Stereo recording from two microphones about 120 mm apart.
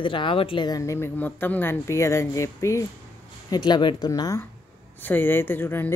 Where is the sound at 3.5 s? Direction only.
40° left (ahead or behind).